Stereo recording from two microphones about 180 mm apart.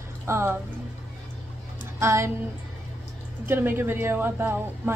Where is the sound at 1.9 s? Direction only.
15° right (ahead or behind).